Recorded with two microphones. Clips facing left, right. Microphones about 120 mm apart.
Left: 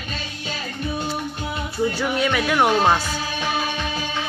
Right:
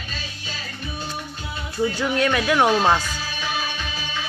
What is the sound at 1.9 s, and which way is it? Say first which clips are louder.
Speech: even; 10° left (ahead or behind).